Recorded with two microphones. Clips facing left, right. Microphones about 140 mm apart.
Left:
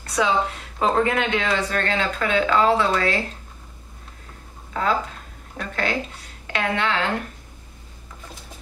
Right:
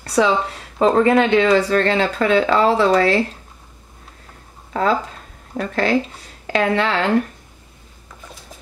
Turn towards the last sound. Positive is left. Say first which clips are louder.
# right 6 dB
turn(degrees=-35)  # may be behind; listen again after turning